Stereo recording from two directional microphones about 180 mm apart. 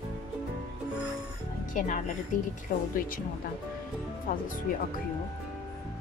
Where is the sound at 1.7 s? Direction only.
40° left (ahead or behind).